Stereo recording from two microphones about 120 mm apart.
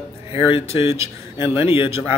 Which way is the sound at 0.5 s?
50° left (ahead or behind).